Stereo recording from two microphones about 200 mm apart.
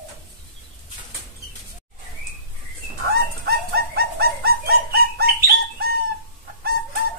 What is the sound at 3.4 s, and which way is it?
Bird, 50° right (ahead or behind).